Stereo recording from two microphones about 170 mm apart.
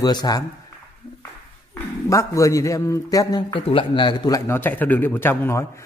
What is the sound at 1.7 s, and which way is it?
A man's voice, 20° left (ahead or behind).